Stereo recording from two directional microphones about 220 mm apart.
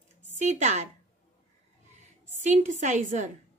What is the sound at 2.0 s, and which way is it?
A woman's voice, 30° right (ahead or behind).